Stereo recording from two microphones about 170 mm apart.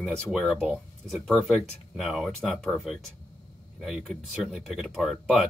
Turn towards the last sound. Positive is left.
turn(degrees=-5)  # may be behind; listen again after turning